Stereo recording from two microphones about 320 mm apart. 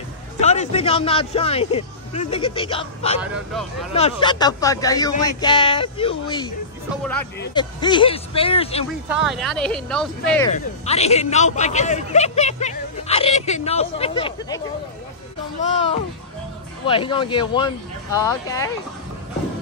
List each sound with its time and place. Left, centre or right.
0.4 s a man's voice: left
9.1 s speech: centre
10.5 s speech: centre
15.6 s a man's voice: left